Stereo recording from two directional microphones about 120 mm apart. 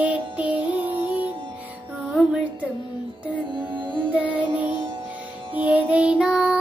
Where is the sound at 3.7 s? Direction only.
45° right (ahead or behind).